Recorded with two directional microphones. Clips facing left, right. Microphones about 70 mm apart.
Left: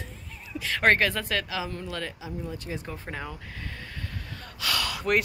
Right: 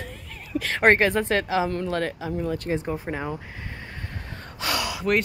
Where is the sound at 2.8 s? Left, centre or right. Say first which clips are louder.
Right 7 dB; right.